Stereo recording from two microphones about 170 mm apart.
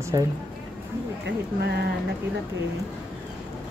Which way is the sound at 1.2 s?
75° right (ahead or behind).